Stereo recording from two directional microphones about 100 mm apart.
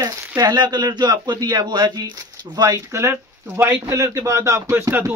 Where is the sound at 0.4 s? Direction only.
40° right (ahead or behind).